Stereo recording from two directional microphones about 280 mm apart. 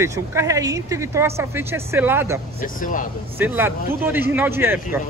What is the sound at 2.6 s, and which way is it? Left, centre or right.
Speech, left.